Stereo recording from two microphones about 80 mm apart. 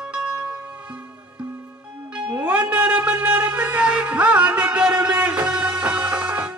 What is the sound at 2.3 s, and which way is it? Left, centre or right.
Music, centre.